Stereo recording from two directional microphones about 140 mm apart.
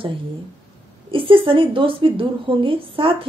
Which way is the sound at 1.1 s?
40° right (ahead or behind).